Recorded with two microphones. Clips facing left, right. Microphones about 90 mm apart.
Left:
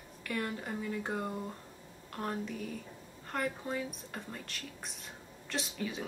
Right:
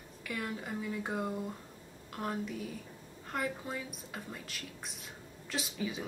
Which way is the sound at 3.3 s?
Centre (ahead or behind).